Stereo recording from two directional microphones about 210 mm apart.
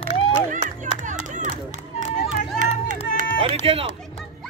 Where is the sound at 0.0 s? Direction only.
30° left (ahead or behind).